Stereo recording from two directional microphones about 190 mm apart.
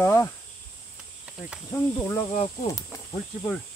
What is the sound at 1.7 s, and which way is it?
Speech, 10° left (ahead or behind).